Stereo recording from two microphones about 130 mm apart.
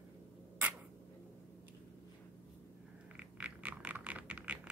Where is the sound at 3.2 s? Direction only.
10° right (ahead or behind).